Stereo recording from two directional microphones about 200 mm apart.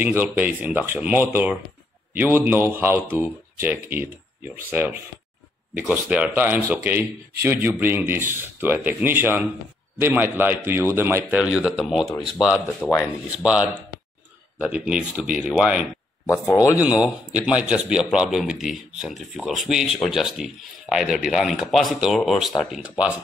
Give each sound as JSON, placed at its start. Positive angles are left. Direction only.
{"t": 0.0, "sound": "speech", "side_deg": -10}
{"t": 12.8, "sound": "speech", "side_deg": 10}
{"t": 13.4, "sound": "a man's voice", "side_deg": -5}
{"t": 16.3, "sound": "speech", "side_deg": 15}
{"t": 16.7, "sound": "a man's voice", "side_deg": -5}